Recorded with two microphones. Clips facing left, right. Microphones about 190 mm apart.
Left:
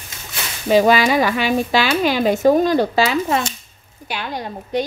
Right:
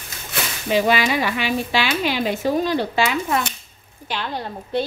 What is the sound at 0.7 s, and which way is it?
Speech, 40° left (ahead or behind).